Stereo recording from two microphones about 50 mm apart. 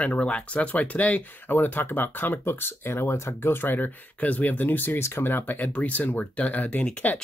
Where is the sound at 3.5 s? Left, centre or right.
Left.